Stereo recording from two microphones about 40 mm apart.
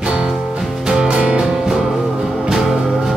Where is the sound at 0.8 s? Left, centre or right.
Centre.